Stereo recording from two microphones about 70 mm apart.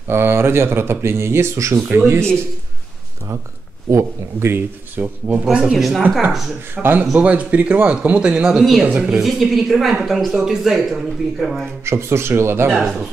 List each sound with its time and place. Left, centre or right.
0.1 s speech: right
1.9 s speech: right
3.9 s speech: right
5.4 s speech: centre
6.7 s speech: right
7.2 s speech: centre
8.5 s speech: centre
8.8 s speech: centre
9.2 s speech: centre
11.8 s speech: right
12.6 s speech: centre